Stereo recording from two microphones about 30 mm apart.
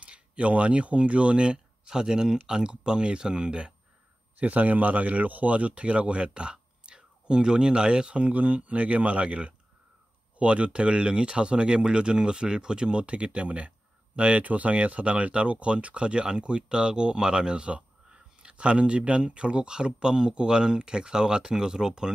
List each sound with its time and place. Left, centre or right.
0.0 s speech: right
1.9 s speech: right
4.4 s speech: right
8.1 s speech: right
12.9 s speech: right